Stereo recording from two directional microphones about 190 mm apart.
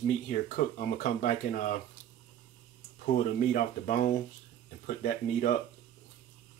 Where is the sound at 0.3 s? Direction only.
40° left (ahead or behind).